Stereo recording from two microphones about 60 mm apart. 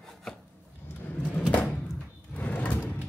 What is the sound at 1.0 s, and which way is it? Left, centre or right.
Drawer open or close, left.